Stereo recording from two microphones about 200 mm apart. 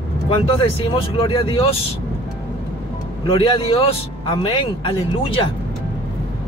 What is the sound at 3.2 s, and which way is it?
Speech, 25° left (ahead or behind).